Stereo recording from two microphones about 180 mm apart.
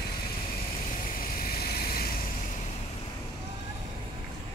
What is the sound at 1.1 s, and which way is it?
Vehicle, 55° left (ahead or behind).